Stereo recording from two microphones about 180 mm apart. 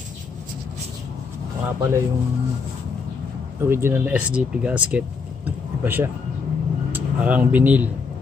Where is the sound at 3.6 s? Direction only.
15° right (ahead or behind).